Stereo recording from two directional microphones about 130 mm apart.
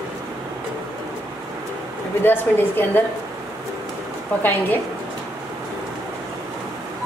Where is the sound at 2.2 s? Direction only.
15° left (ahead or behind).